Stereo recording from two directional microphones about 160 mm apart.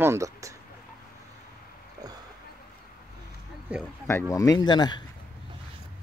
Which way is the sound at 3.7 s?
10° right (ahead or behind).